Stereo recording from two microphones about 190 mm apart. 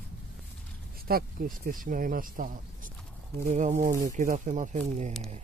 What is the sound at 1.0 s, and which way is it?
Speech, 50° right (ahead or behind).